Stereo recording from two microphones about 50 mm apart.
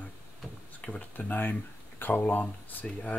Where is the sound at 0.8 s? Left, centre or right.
Left.